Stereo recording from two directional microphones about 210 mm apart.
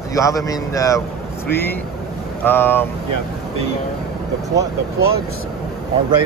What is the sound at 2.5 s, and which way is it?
Speech, 10° left (ahead or behind).